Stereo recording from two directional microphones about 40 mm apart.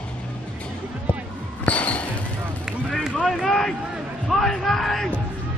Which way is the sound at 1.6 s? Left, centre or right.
Left.